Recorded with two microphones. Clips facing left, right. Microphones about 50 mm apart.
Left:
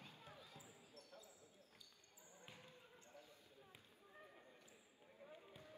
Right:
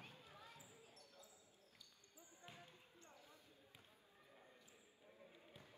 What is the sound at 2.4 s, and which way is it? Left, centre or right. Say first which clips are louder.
Basketball bounce: right 2 dB; right.